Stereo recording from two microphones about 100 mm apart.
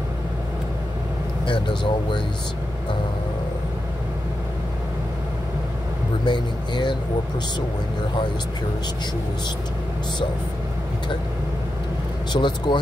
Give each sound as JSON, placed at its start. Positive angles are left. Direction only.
{"t": 1.4, "sound": "speech", "side_deg": 55}
{"t": 6.2, "sound": "speech", "side_deg": 50}
{"t": 12.3, "sound": "speech", "side_deg": 50}